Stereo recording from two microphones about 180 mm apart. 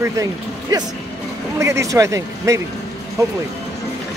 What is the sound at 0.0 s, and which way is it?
Speech, 20° right (ahead or behind).